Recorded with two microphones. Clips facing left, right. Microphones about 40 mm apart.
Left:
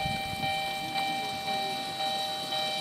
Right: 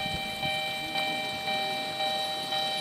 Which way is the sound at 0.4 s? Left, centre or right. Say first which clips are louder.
Right 1 dB; right.